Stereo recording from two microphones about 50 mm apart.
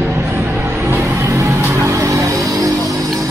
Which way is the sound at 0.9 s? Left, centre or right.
Right.